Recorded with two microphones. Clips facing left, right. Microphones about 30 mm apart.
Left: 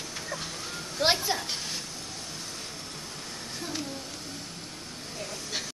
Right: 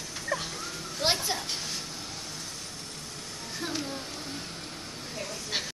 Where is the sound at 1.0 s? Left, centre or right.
Centre.